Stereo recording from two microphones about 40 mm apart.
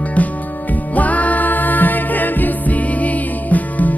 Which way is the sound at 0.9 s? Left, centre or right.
Left.